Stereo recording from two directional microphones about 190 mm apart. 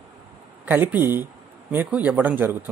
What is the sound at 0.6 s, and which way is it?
Speech, 10° right (ahead or behind).